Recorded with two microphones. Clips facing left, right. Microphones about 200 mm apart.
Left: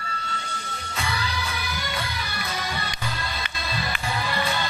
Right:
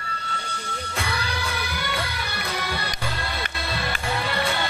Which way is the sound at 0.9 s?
70° right (ahead or behind).